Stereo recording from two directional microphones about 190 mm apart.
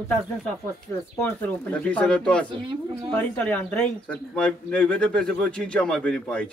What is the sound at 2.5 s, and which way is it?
Speech, 25° right (ahead or behind).